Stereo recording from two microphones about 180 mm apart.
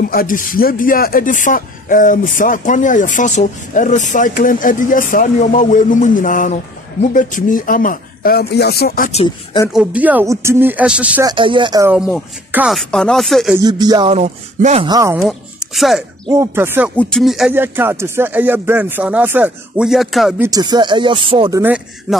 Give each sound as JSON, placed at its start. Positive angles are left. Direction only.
{"t": 0.0, "sound": "speech", "side_deg": 55}
{"t": 9.1, "sound": "speech", "side_deg": 30}
{"t": 9.7, "sound": "speech", "side_deg": -5}
{"t": 11.2, "sound": "speech", "side_deg": -25}
{"t": 11.8, "sound": "speech", "side_deg": -10}
{"t": 13.6, "sound": "speech", "side_deg": -20}
{"t": 14.1, "sound": "a sound", "side_deg": -40}
{"t": 14.9, "sound": "speech", "side_deg": -20}
{"t": 15.1, "sound": "a woman's voice", "side_deg": 0}
{"t": 16.3, "sound": "speech", "side_deg": -15}
{"t": 16.9, "sound": "speech", "side_deg": 5}
{"t": 17.6, "sound": "speech", "side_deg": -10}
{"t": 20.3, "sound": "speech", "side_deg": -20}
{"t": 21.5, "sound": "speech", "side_deg": -10}